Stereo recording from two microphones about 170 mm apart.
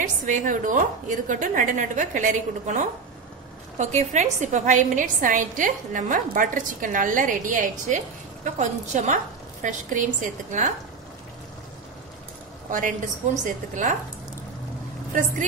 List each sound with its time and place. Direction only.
0.2 s a woman's voice: 50° right (ahead or behind)
12.7 s a woman's voice: 45° right (ahead or behind)